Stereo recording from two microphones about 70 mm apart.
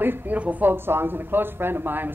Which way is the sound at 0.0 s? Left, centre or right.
Right.